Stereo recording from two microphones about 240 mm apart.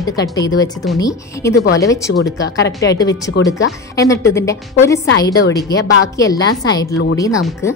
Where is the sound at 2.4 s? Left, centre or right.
Left.